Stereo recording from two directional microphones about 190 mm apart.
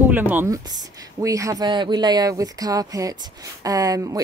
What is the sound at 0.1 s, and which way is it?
Speech, 10° right (ahead or behind).